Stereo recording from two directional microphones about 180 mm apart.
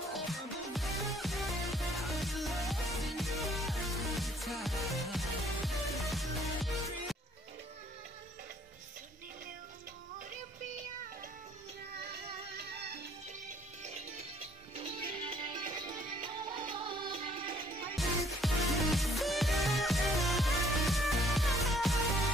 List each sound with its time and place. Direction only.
0.1 s music: centre (ahead or behind)
13.8 s music: 40° right (ahead or behind)
17.9 s music: centre (ahead or behind)